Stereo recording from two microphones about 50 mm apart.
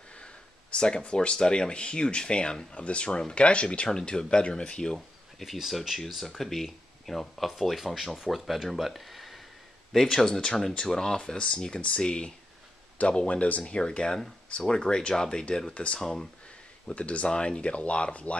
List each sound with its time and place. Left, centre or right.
0.7 s speech: centre
4.9 s speech: centre
12.9 s speech: left
13.7 s speech: centre
16.9 s speech: left